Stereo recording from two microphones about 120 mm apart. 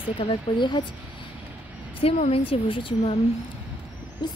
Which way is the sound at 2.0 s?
55° left (ahead or behind).